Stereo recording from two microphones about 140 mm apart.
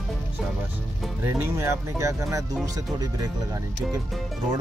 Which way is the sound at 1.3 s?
20° right (ahead or behind).